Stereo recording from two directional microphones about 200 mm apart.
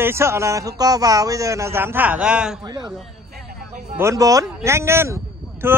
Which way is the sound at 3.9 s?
15° right (ahead or behind).